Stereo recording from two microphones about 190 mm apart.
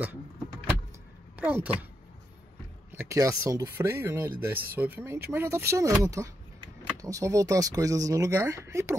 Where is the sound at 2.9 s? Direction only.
15° right (ahead or behind).